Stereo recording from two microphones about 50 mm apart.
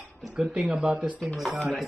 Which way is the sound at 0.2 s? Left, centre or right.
Centre.